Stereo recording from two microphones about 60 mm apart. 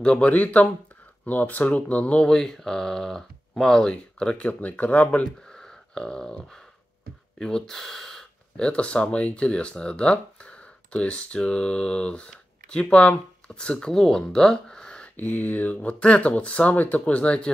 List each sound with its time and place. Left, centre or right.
0.0 s speech: left
2.2 s speech: centre; by 5.3 s left
5.5 s a sound: centre
7.3 s speech: centre
15.1 s speech: left